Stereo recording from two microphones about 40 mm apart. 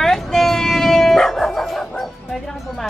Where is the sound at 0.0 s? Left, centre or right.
Centre.